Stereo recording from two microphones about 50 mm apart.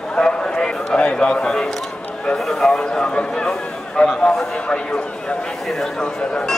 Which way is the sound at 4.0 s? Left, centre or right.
Centre.